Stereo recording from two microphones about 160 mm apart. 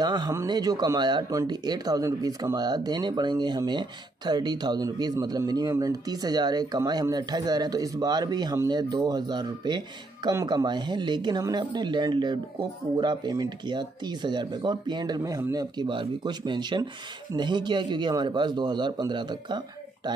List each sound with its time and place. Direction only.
0.0 s speech: 25° right (ahead or behind)